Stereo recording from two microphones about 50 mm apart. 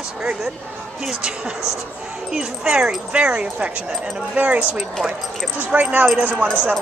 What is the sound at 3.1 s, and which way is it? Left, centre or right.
Speech, centre.